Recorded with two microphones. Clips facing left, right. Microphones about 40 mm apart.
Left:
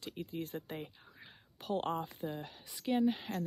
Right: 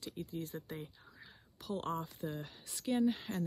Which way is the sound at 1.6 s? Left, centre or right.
Left.